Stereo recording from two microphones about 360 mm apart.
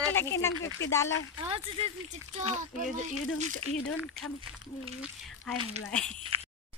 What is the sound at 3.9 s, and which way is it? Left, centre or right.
Speech, centre.